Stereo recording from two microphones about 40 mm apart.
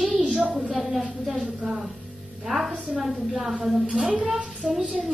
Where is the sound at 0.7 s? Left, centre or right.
Centre.